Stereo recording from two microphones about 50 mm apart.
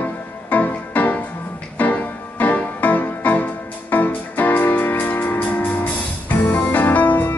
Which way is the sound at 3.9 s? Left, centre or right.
Left.